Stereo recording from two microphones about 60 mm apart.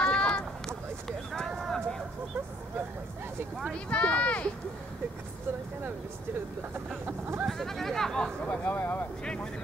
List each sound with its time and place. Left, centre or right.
0.0 s a sound: centre
3.7 s speech: centre
7.1 s speech: right
7.4 s chatter: centre
8.5 s speech: left
9.2 s speech: centre